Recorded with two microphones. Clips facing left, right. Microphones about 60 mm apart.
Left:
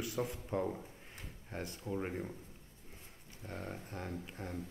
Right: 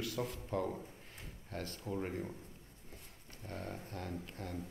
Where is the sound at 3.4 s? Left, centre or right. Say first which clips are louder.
Even; left.